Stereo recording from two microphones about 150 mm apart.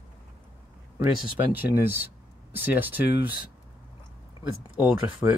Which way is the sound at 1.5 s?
15° right (ahead or behind).